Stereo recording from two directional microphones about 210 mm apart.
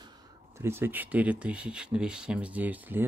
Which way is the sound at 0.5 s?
10° right (ahead or behind).